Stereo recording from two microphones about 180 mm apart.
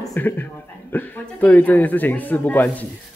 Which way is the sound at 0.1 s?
10° left (ahead or behind).